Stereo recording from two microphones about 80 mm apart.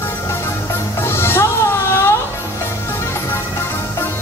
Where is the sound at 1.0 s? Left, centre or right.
Left.